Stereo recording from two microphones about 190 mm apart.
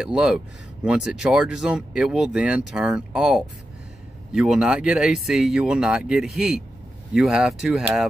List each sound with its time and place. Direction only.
0.0 s speech: 5° right (ahead or behind)